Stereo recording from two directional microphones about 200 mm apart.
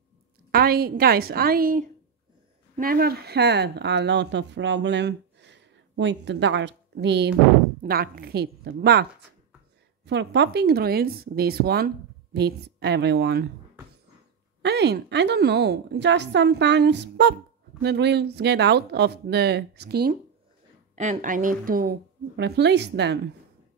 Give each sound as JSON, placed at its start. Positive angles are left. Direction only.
{"t": 0.5, "sound": "speech", "side_deg": -50}
{"t": 10.0, "sound": "a woman's voice", "side_deg": -60}
{"t": 14.6, "sound": "a woman's voice", "side_deg": -55}
{"t": 20.9, "sound": "speech", "side_deg": -35}
{"t": 22.4, "sound": "a woman's voice", "side_deg": -55}